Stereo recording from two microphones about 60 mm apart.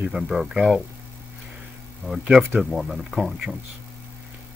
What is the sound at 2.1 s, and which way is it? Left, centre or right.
Speech, right.